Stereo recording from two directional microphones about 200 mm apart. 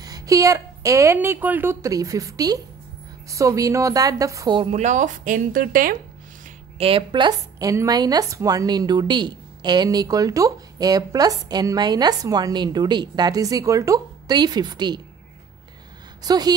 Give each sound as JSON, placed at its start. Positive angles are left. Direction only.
{"t": 0.0, "sound": "a woman's voice", "side_deg": -15}
{"t": 6.8, "sound": "a woman's voice", "side_deg": -25}
{"t": 16.2, "sound": "a woman's voice", "side_deg": -20}